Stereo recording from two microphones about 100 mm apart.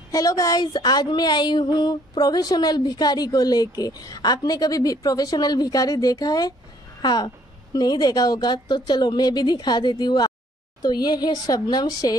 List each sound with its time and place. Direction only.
0.1 s speech: 35° left (ahead or behind)